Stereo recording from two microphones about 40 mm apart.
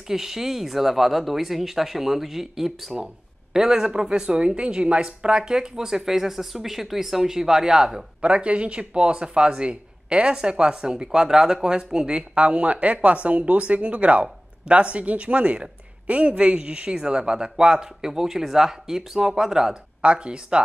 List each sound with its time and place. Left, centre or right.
0.1 s speech: centre
8.2 s speech: right
12.4 s speech: right; by 19.8 s centre
20.0 s speech: right